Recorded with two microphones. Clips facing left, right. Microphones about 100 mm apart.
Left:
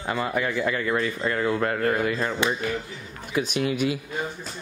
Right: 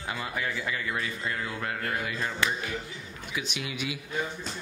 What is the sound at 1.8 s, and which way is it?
Speech, 45° left (ahead or behind).